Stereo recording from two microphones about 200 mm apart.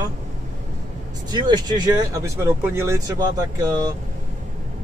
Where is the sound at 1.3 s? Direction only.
20° right (ahead or behind).